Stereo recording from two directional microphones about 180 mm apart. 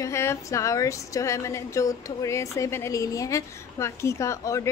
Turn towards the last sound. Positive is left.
turn(degrees=15)  # may be behind; listen again after turning